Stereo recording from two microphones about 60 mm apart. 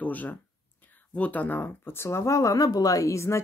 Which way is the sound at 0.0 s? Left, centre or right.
Left.